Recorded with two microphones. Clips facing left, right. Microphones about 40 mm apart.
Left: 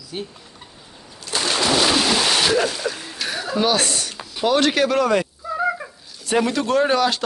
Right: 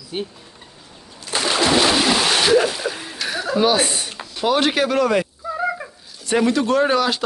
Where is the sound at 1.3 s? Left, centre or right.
Centre.